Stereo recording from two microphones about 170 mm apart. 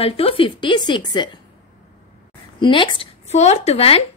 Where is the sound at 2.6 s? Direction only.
30° left (ahead or behind).